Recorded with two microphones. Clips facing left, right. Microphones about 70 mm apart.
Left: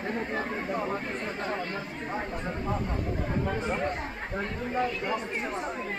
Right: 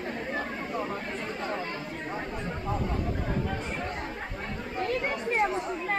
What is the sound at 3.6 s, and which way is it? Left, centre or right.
Speech, left.